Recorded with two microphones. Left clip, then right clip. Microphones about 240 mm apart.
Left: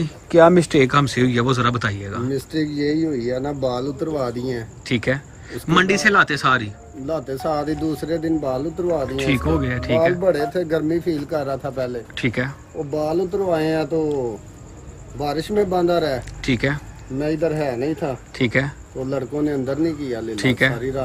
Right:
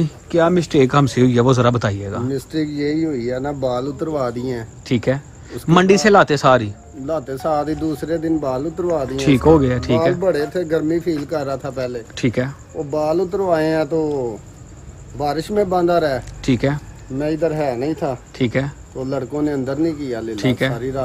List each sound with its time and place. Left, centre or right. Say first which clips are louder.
0.0 s speech: left 4 dB; centre
2.2 s speech: even; centre
4.8 s speech: right 2 dB; centre
7.1 s speech: right 3 dB; centre
9.1 s speech: right 7 dB; centre
10.2 s speech: right 1 dB; centre
15.1 s speech: right 2 dB; centre
16.3 s speech: right 2 dB; centre
17.2 s speech: right 2 dB; centre
18.3 s speech: even; centre
19.0 s speech: right 1 dB; centre
20.3 s speech: left 2 dB; centre
20.7 s speech: right 1 dB; centre